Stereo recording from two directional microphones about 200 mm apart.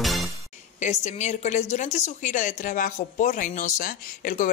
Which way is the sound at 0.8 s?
35° left (ahead or behind).